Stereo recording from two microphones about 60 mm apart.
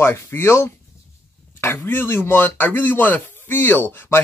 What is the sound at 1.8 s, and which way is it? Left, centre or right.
Speech, left.